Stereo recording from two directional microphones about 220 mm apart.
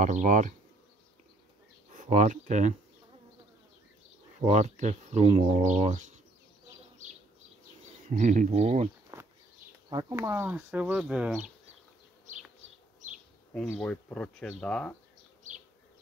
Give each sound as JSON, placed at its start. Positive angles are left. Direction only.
{"t": 0.0, "sound": "speech", "side_deg": -35}
{"t": 1.9, "sound": "speech", "side_deg": -35}
{"t": 4.4, "sound": "speech", "side_deg": -30}
{"t": 8.1, "sound": "speech", "side_deg": -35}
{"t": 9.1, "sound": "a sound", "side_deg": -15}
{"t": 9.8, "sound": "speech", "side_deg": -15}
{"t": 13.7, "sound": "speech", "side_deg": 5}